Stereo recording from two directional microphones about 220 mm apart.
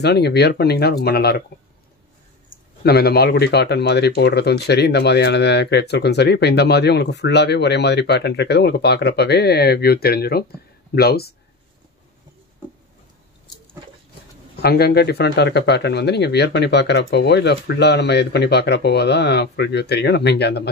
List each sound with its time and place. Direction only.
0.0 s speech: 50° left (ahead or behind)
2.8 s speech: 45° left (ahead or behind)
14.6 s speech: 45° left (ahead or behind)